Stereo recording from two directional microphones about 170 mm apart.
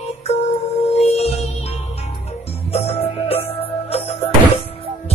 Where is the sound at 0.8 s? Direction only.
40° left (ahead or behind).